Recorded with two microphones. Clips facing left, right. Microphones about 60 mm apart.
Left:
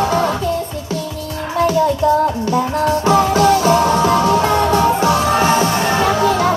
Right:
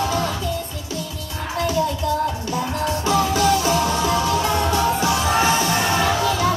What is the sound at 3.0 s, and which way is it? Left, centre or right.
Music, left.